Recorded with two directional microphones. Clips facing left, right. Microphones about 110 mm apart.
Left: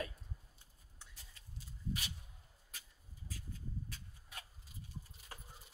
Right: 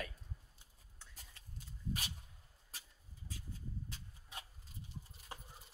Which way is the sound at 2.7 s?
25° right (ahead or behind).